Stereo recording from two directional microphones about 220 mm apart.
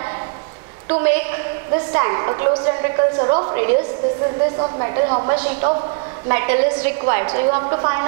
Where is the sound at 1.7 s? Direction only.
20° right (ahead or behind).